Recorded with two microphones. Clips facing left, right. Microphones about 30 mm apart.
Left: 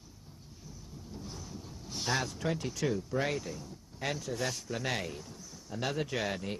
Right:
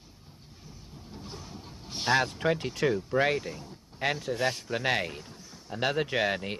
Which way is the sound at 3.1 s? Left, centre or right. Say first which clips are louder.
Right 6 dB; right.